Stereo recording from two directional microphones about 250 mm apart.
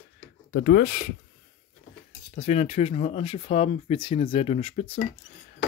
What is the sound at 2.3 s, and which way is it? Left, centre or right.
Speech, left.